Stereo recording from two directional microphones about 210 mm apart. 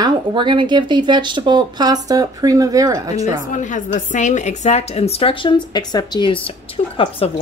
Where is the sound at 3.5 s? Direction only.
35° left (ahead or behind).